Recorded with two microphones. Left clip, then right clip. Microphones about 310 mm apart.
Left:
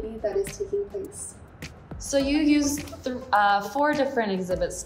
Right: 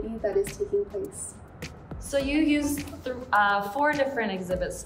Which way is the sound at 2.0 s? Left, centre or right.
Centre.